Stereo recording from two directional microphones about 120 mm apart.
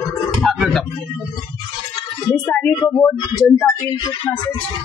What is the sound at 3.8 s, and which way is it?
Speech, 40° left (ahead or behind).